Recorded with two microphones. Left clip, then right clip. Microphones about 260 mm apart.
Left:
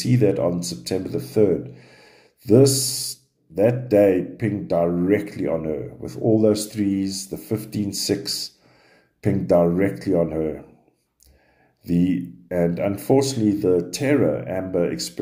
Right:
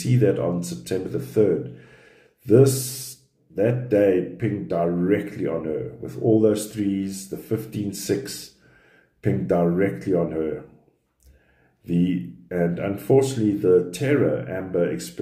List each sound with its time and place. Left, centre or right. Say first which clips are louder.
0.0 s speech: left 2 dB; left
2.4 s speech: left 1 dB; left
11.8 s speech: left 3 dB; left